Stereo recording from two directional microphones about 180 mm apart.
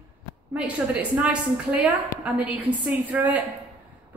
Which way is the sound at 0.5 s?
5° right (ahead or behind).